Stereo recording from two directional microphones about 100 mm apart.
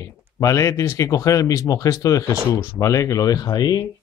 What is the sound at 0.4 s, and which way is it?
Speech, 35° left (ahead or behind).